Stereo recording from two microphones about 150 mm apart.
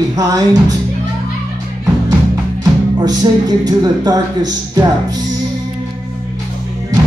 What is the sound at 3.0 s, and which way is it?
Speech, 25° right (ahead or behind).